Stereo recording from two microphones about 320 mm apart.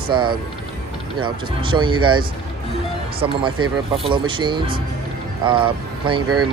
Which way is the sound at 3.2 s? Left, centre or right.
Centre.